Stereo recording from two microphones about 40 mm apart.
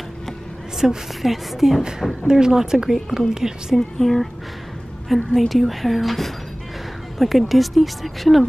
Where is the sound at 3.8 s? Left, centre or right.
Centre.